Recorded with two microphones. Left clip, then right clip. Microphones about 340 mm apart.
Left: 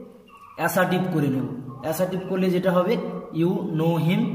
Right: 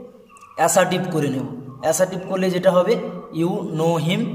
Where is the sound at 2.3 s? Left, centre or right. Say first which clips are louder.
Right 5 dB; centre.